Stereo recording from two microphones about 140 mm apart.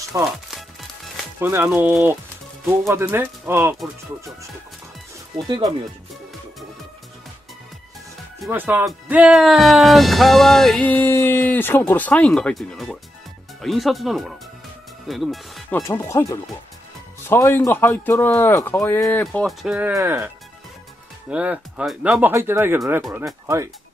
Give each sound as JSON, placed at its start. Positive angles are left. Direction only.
{"t": 0.2, "sound": "music", "side_deg": 0}
{"t": 1.4, "sound": "speech", "side_deg": -15}
{"t": 8.5, "sound": "speech", "side_deg": -15}
{"t": 9.1, "sound": "music", "side_deg": -5}
{"t": 11.0, "sound": "speech", "side_deg": 15}
{"t": 13.6, "sound": "music", "side_deg": 0}
{"t": 15.7, "sound": "speech", "side_deg": 20}
{"t": 19.4, "sound": "speech", "side_deg": -5}
{"t": 19.9, "sound": "speech", "side_deg": -20}
{"t": 21.3, "sound": "speech", "side_deg": -10}